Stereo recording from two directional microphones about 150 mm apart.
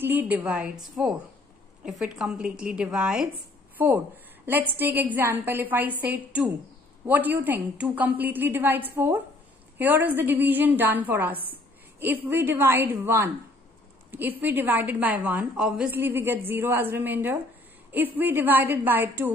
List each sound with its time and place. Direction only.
0.0 s a woman's voice: 15° right (ahead or behind)
14.4 s a woman's voice: 10° right (ahead or behind)